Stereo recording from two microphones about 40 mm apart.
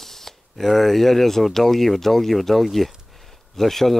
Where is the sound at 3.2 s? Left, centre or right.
Centre.